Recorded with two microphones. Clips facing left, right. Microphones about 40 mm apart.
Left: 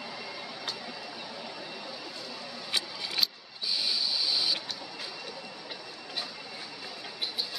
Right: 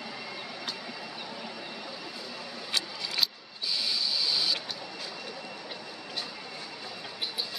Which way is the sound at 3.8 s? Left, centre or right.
Left.